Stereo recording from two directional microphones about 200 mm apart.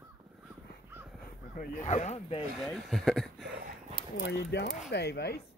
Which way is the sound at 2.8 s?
Centre (ahead or behind).